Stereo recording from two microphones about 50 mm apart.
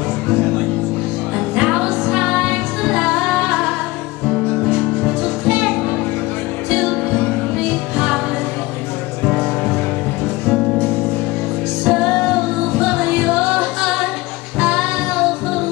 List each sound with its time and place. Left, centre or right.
1.5 s music: centre
5.2 s music: centre
9.2 s music: centre
11.8 s music: centre
13.5 s music: centre